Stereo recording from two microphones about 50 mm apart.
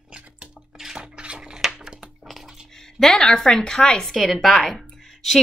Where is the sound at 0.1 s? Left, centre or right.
Centre.